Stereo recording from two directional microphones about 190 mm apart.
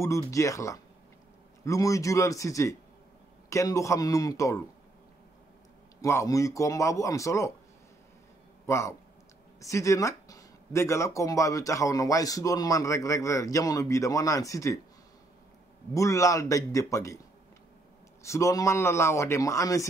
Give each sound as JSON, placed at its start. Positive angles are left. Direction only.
{"t": 0.0, "sound": "speech", "side_deg": 15}
{"t": 5.9, "sound": "speech", "side_deg": 15}
{"t": 8.6, "sound": "speech", "side_deg": 15}
{"t": 15.9, "sound": "speech", "side_deg": 15}
{"t": 18.2, "sound": "speech", "side_deg": 15}